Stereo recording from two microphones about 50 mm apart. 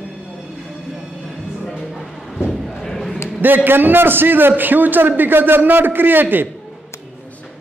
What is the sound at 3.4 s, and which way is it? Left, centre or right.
A man's voice, right.